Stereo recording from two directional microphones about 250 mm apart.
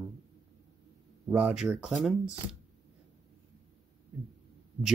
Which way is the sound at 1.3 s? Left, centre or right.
Centre.